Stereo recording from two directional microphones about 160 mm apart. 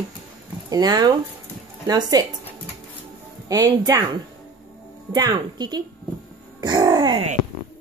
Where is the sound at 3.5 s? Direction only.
25° right (ahead or behind).